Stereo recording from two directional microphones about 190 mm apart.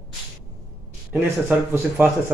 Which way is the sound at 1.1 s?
10° right (ahead or behind).